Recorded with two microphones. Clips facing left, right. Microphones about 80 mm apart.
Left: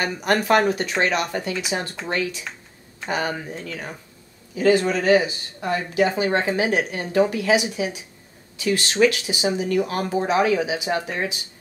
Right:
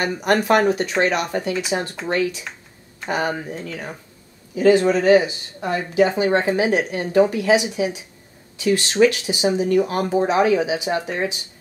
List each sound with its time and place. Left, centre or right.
0.0 s speech: right
3.1 s speech: right
4.6 s speech: right